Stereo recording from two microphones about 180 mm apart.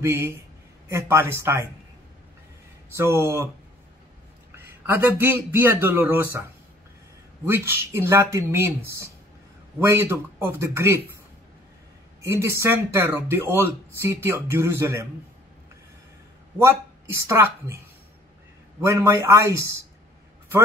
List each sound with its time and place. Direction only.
0.0 s speech: 15° right (ahead or behind)
2.9 s speech: 15° right (ahead or behind)
4.8 s speech: 10° right (ahead or behind)
7.4 s speech: 15° right (ahead or behind)
12.3 s speech: 15° right (ahead or behind)
17.3 s speech: 15° right (ahead or behind)
18.8 s speech: 15° right (ahead or behind)